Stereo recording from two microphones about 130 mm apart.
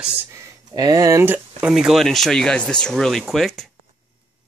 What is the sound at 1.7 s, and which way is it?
Speech, centre (ahead or behind).